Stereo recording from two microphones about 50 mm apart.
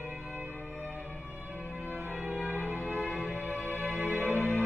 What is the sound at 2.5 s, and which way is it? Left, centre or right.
Music, right.